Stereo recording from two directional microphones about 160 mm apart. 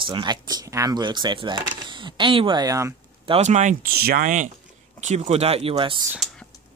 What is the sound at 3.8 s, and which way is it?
Speech, 75° right (ahead or behind).